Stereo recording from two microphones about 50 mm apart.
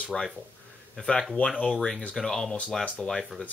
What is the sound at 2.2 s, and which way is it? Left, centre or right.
Speech, centre.